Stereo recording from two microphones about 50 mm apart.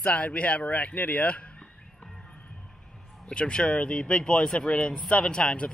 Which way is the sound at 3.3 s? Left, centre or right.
Centre.